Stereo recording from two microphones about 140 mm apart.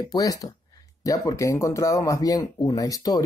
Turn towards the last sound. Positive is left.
turn(degrees=25)  # may be behind; listen again after turning